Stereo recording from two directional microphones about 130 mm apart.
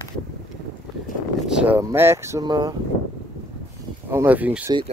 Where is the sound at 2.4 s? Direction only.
35° right (ahead or behind).